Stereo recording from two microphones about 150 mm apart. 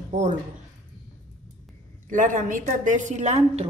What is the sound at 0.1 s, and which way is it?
Speech, 60° right (ahead or behind).